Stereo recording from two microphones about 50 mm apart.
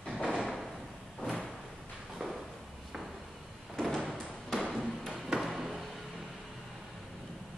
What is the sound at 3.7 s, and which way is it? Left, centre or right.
Door, centre.